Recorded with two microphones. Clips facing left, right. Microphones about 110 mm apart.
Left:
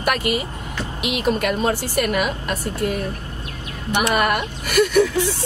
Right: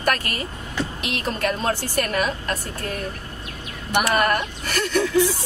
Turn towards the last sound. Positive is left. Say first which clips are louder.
# left 6 dB
turn(degrees=10)  # may be behind; listen again after turning